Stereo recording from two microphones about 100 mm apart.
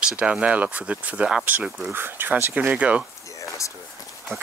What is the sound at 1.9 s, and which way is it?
Speech, 20° right (ahead or behind).